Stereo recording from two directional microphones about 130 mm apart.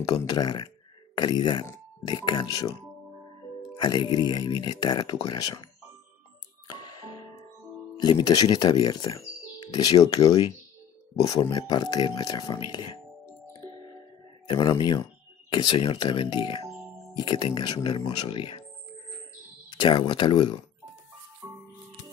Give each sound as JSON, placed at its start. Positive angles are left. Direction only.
{"t": 0.0, "sound": "speech", "side_deg": 30}
{"t": 8.0, "sound": "speech", "side_deg": 35}
{"t": 11.5, "sound": "speech", "side_deg": 30}
{"t": 14.5, "sound": "speech", "side_deg": 35}
{"t": 19.8, "sound": "speech", "side_deg": 35}